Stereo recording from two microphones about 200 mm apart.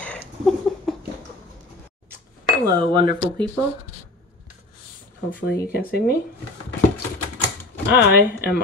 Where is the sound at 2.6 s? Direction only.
25° right (ahead or behind).